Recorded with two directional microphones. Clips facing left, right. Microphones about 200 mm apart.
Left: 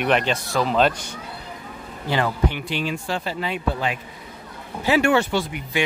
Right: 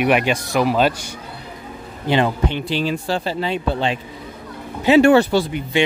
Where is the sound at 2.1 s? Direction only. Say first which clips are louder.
Right 4 dB; 25° right (ahead or behind).